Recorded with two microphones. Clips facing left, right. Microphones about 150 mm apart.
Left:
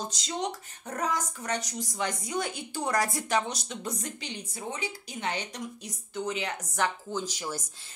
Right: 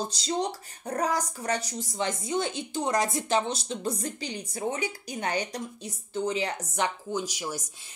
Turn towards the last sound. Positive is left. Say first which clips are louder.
# right 2 dB
turn(degrees=-10)  # may be behind; listen again after turning